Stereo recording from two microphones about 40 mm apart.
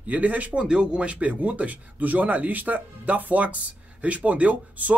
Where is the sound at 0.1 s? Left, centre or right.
Right.